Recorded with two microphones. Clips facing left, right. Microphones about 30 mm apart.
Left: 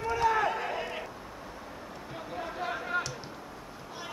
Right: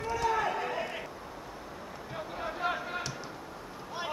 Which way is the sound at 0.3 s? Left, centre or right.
Centre.